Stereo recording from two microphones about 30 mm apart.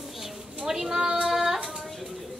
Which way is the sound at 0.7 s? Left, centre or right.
Centre.